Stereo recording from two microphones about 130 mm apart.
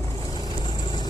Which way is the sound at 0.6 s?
35° left (ahead or behind).